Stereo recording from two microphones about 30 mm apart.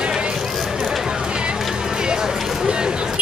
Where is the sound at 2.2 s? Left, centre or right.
Right.